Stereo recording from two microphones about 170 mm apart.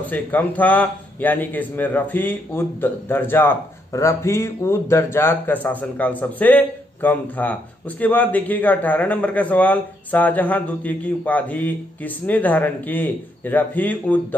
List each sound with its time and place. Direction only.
0.1 s a man's voice: 10° left (ahead or behind)